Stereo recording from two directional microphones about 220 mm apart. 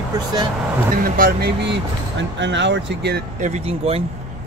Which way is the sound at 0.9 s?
40° right (ahead or behind).